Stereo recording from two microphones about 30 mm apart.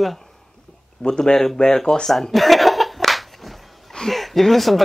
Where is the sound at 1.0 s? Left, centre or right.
Left.